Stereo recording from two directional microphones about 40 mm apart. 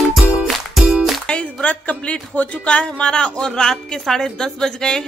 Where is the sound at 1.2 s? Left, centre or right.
Left.